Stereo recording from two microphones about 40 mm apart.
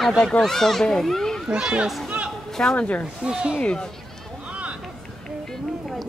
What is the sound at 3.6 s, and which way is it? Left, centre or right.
Speech, left.